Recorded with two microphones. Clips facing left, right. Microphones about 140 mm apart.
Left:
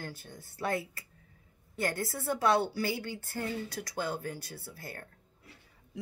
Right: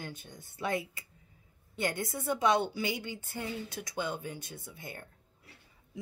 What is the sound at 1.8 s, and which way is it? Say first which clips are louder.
Speech: left 1 dB; centre (ahead or behind).